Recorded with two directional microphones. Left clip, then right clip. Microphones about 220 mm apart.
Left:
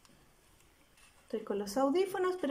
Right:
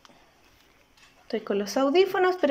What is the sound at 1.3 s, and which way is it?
A woman's voice, 15° left (ahead or behind).